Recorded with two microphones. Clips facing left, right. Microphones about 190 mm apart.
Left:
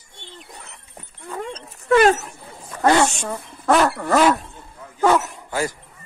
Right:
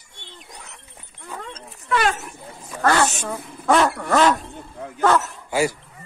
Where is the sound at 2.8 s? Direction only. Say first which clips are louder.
Left 3 dB; 20° left (ahead or behind).